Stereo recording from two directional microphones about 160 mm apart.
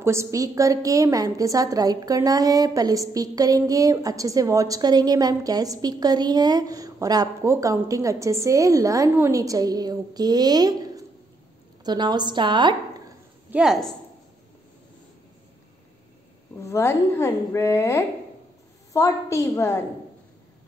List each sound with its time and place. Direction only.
0.0 s a woman's voice: 15° right (ahead or behind)
13.5 s a woman's voice: 5° right (ahead or behind)
16.6 s a woman's voice: 15° left (ahead or behind)